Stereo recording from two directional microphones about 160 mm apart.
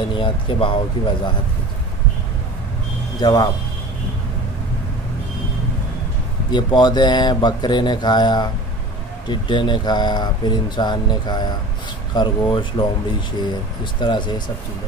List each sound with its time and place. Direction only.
0.1 s speech: 30° left (ahead or behind)
3.2 s speech: 25° left (ahead or behind)
6.5 s speech: 25° left (ahead or behind)
13.9 s speech: 30° left (ahead or behind)